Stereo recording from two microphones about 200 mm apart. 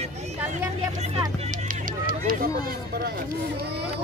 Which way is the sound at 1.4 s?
40° right (ahead or behind).